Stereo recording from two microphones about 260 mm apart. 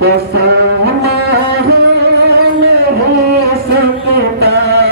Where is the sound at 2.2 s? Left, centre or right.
Right.